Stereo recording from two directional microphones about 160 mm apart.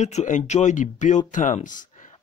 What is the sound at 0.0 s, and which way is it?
Speech, 45° left (ahead or behind).